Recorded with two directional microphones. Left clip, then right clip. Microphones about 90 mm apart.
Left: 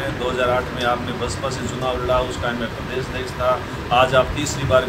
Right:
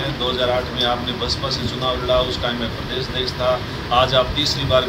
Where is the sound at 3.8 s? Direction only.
20° left (ahead or behind).